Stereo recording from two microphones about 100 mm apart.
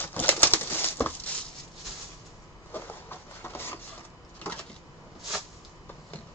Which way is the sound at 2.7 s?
20° left (ahead or behind).